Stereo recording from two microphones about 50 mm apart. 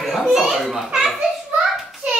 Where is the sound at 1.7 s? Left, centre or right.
Centre.